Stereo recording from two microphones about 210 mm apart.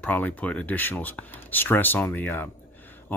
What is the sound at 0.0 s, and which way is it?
Speech, 5° left (ahead or behind).